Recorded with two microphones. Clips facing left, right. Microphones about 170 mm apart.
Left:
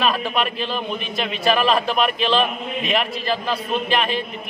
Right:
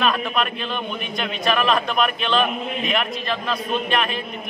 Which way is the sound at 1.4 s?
30° left (ahead or behind).